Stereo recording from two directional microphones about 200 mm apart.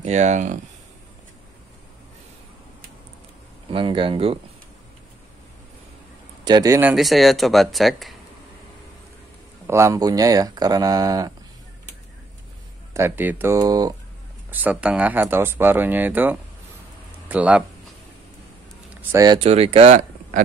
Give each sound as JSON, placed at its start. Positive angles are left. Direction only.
{"t": 0.0, "sound": "speech", "side_deg": -35}
{"t": 3.7, "sound": "speech", "side_deg": -25}
{"t": 6.4, "sound": "speech", "side_deg": -20}
{"t": 9.7, "sound": "speech", "side_deg": -15}
{"t": 12.9, "sound": "speech", "side_deg": -10}
{"t": 14.5, "sound": "speech", "side_deg": -5}
{"t": 18.9, "sound": "speech", "side_deg": -20}